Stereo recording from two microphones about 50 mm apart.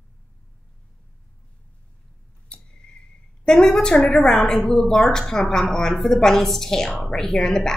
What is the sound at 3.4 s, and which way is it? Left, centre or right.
A woman's voice, centre.